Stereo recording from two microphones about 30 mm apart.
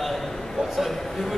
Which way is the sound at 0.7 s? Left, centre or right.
Centre.